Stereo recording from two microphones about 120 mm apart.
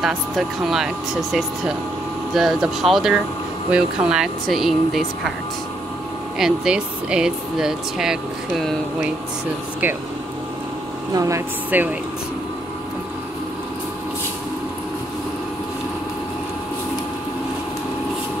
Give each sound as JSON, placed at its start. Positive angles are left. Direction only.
{"t": 0.0, "sound": "speech", "side_deg": 0}
{"t": 6.3, "sound": "speech", "side_deg": -5}
{"t": 11.1, "sound": "speech", "side_deg": -25}
{"t": 11.7, "sound": "speech", "side_deg": -15}